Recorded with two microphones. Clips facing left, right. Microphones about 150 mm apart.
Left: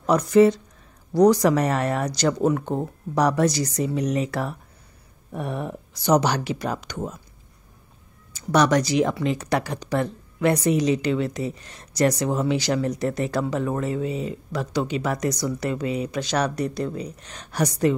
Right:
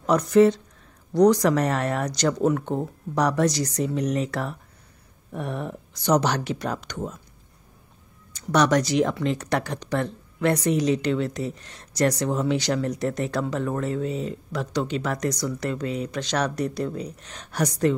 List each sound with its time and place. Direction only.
0.0 s speech: 5° left (ahead or behind)
8.3 s speech: 5° left (ahead or behind)